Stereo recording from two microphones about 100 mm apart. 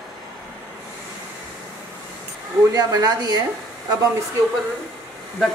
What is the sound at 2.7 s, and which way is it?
Speech, 40° right (ahead or behind).